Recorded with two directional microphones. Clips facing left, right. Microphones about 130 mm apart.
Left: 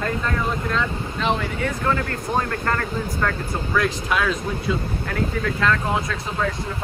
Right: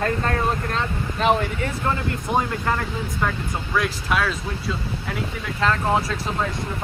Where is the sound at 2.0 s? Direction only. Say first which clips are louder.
Right 1 dB; 10° right (ahead or behind).